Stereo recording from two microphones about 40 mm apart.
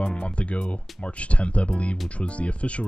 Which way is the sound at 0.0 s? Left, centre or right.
Left.